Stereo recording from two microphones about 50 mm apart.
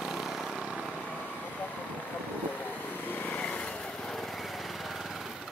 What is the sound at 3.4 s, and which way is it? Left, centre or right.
Vehicle, left.